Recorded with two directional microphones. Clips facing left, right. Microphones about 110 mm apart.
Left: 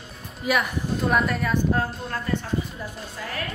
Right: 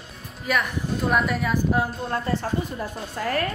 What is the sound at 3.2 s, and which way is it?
Speech, 50° right (ahead or behind).